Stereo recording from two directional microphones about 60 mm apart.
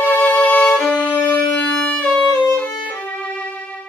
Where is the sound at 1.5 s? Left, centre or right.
Left.